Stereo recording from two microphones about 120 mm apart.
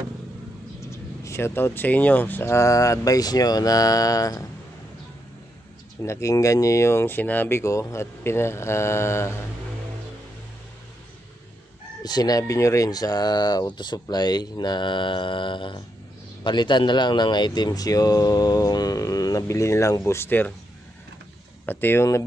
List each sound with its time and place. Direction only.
0.8 s speech: 20° left (ahead or behind)
6.0 s speech: 25° left (ahead or behind)
12.0 s speech: 35° left (ahead or behind); by 20.5 s 15° left (ahead or behind)
21.6 s speech: 15° left (ahead or behind)